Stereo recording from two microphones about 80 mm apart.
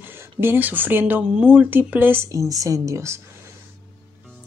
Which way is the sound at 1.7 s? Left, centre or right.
Right.